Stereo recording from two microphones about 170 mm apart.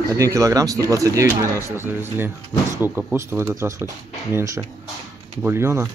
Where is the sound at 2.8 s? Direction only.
10° right (ahead or behind).